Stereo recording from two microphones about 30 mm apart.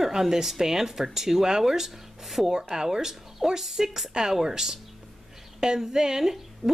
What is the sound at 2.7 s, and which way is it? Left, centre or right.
Speech, centre.